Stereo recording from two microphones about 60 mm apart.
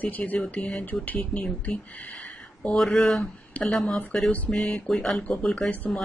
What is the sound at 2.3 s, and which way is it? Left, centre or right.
Speech, centre.